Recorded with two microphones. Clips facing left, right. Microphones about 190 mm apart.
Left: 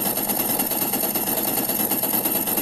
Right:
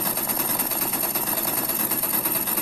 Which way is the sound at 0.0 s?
30° left (ahead or behind).